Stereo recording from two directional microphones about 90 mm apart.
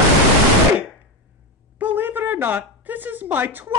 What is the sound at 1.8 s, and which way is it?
Speech, 20° right (ahead or behind).